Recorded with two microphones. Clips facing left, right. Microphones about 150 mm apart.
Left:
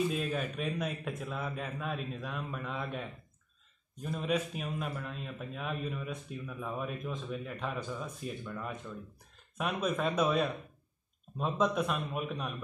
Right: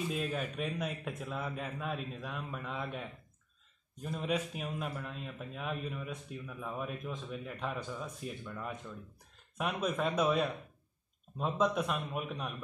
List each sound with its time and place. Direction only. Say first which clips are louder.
0.1 s speech: left 2 dB; 15° right (ahead or behind)
4.3 s speech: left 2 dB; 20° right (ahead or behind)
5.0 s speech: left 2 dB; 5° right (ahead or behind)